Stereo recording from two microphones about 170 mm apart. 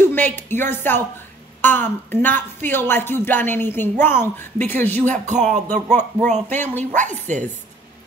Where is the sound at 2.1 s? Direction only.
10° left (ahead or behind).